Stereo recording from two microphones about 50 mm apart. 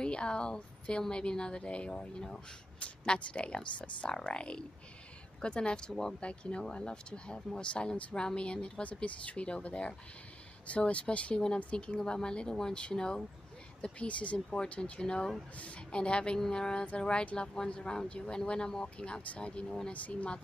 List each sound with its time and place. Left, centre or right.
0.0 s speech: centre